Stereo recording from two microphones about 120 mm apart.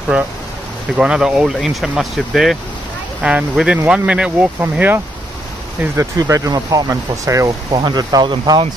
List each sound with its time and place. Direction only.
0.1 s speech: 10° right (ahead or behind)
5.9 s speech: 30° right (ahead or behind)